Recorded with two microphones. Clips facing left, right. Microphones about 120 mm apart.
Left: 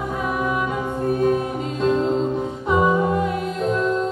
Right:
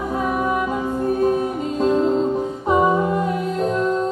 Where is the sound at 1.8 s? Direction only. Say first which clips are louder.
Right 2 dB; 40° right (ahead or behind).